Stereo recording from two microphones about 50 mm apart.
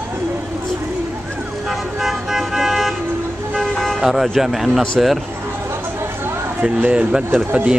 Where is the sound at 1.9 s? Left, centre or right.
Centre.